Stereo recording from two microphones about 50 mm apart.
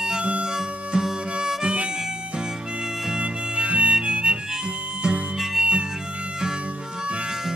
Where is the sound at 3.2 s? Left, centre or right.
Right.